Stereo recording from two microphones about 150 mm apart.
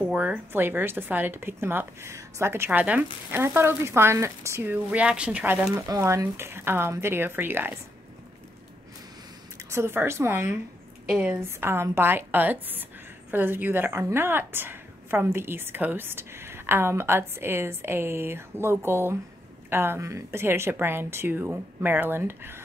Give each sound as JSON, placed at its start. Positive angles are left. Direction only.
{"t": 0.0, "sound": "a woman's voice", "side_deg": -5}
{"t": 5.8, "sound": "a woman's voice", "side_deg": -20}
{"t": 9.6, "sound": "a woman's voice", "side_deg": -20}